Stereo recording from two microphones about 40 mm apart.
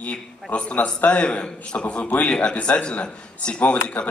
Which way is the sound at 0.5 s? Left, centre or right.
Left.